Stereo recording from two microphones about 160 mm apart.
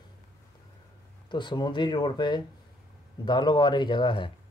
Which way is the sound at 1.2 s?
30° left (ahead or behind).